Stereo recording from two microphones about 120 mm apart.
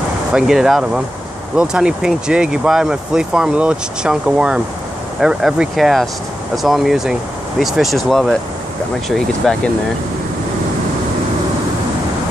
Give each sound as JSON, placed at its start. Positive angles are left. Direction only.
{"t": 0.3, "sound": "speech", "side_deg": -5}